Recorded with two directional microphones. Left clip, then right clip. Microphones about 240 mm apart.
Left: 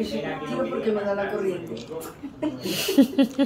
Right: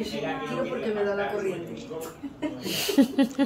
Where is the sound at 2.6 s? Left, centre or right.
Centre.